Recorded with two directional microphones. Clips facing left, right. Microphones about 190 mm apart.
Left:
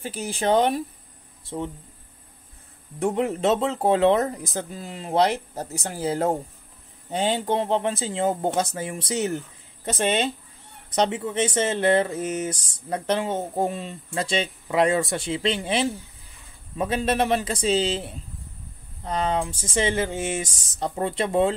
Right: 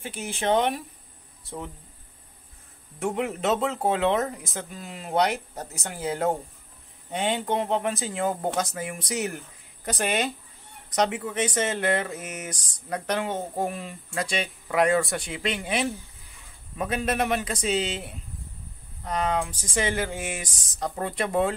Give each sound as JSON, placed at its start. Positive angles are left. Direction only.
{"t": 0.0, "sound": "speech", "side_deg": 35}
{"t": 3.0, "sound": "speech", "side_deg": 35}